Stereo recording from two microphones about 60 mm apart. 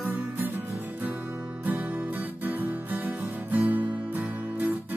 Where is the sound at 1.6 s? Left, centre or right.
Right.